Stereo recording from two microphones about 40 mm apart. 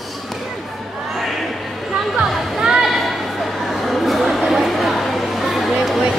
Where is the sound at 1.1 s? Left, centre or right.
Centre.